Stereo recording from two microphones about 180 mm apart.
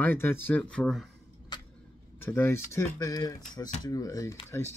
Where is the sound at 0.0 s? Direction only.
10° left (ahead or behind).